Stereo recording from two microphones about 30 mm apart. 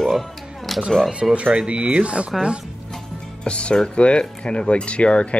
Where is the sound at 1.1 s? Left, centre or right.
Right.